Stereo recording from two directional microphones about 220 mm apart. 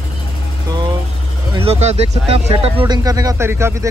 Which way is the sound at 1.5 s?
25° right (ahead or behind).